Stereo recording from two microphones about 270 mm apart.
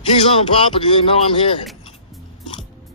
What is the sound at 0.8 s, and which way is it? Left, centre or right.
Speech, centre.